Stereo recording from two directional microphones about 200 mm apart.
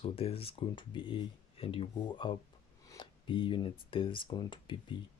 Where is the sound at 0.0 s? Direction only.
30° left (ahead or behind).